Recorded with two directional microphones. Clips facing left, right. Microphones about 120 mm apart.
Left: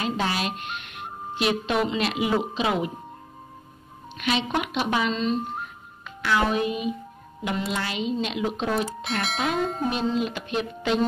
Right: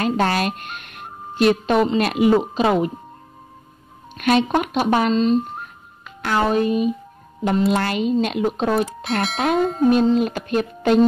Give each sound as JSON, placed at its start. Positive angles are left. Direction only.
{"t": 0.0, "sound": "speech", "side_deg": -50}
{"t": 4.2, "sound": "speech", "side_deg": -50}
{"t": 7.7, "sound": "speech", "side_deg": -55}
{"t": 8.8, "sound": "speech", "side_deg": 0}
{"t": 10.1, "sound": "speech", "side_deg": -45}